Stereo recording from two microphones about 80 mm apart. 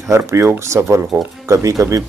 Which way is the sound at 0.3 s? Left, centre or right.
Right.